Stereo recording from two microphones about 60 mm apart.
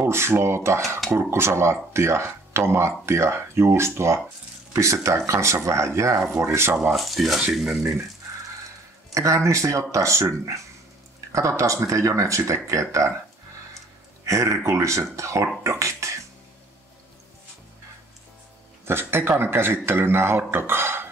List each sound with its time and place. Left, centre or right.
0.0 s speech: right
7.0 s speech: centre
9.1 s speech: right
11.3 s speech: right
14.2 s speech: right
18.9 s a man's voice: right